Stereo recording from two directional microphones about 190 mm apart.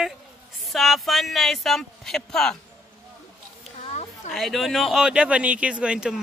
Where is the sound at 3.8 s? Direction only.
35° left (ahead or behind).